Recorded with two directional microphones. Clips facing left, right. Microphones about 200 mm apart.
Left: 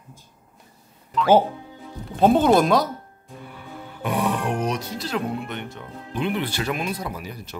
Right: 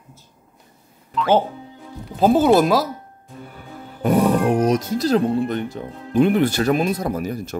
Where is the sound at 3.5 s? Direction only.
40° right (ahead or behind).